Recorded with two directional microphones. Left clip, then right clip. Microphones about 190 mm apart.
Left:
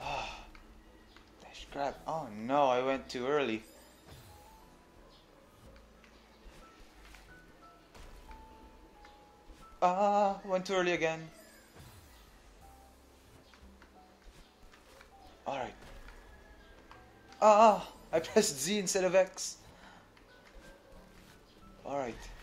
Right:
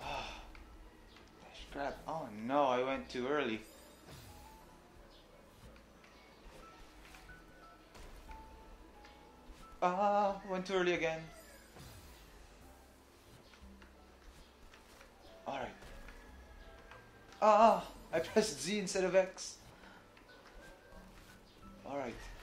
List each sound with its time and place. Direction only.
0.0 s throat clearing: 55° left (ahead or behind)
1.5 s speech: 55° left (ahead or behind)
9.8 s speech: 55° left (ahead or behind)
15.4 s a sound: 55° left (ahead or behind)
17.4 s speech: 55° left (ahead or behind)
21.8 s speech: 55° left (ahead or behind)